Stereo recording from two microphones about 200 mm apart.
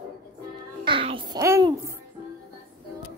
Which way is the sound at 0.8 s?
25° right (ahead or behind).